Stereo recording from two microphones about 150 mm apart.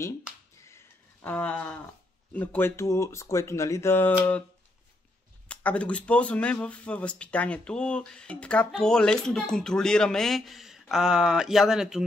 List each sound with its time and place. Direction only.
0.7 s a sound: 15° left (ahead or behind)
2.3 s speech: 10° left (ahead or behind)
5.5 s speech: 10° left (ahead or behind)